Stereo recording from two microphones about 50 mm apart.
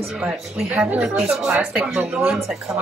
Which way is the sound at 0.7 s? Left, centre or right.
Right.